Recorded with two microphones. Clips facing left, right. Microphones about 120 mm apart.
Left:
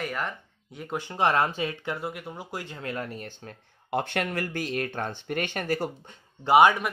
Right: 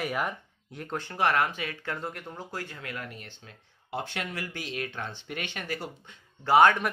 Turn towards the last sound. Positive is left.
turn(degrees=15)  # may be behind; listen again after turning